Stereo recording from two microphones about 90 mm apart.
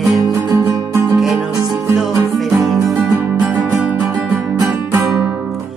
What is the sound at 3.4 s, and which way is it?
Music, 15° right (ahead or behind).